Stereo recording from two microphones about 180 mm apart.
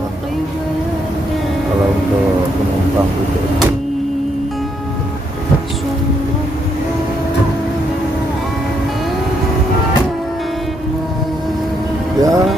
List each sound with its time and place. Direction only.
12.2 s music: 20° right (ahead or behind)